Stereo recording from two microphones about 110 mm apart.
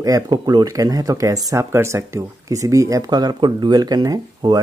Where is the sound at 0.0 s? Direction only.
35° right (ahead or behind).